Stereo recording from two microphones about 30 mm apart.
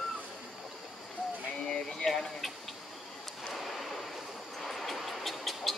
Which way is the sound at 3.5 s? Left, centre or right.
Centre.